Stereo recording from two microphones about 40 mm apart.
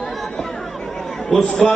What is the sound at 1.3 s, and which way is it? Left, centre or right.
Speech, centre.